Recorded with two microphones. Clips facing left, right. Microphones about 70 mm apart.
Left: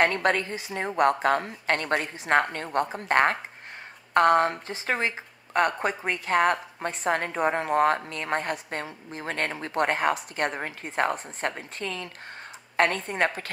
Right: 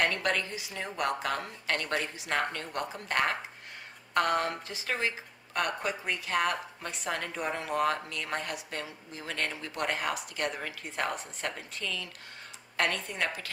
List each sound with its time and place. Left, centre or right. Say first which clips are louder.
0.0 s speech: left 6 dB; left